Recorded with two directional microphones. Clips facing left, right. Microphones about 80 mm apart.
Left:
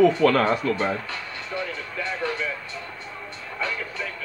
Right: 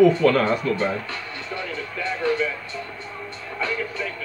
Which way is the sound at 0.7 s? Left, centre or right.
Left.